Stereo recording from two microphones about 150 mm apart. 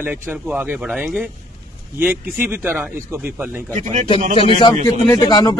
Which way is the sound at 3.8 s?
55° right (ahead or behind).